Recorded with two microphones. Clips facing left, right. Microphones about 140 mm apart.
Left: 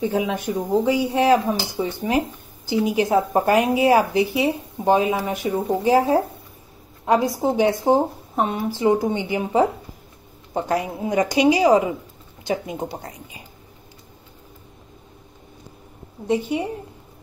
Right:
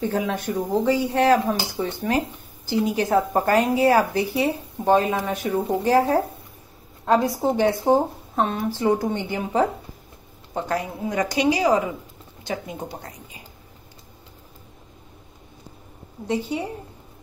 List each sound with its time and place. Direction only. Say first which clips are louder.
0.0 s a woman's voice: left 2 dB; 10° left (ahead or behind)
16.3 s speech: left 3 dB; 15° left (ahead or behind)